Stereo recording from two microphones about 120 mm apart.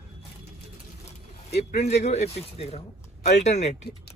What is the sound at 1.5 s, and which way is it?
Speech, 65° left (ahead or behind).